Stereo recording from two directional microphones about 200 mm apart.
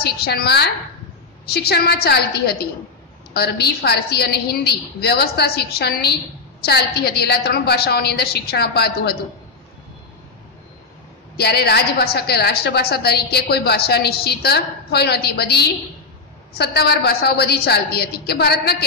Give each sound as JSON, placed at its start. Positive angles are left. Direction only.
{"t": 0.0, "sound": "a woman's voice", "side_deg": 55}
{"t": 11.3, "sound": "a woman's voice", "side_deg": 55}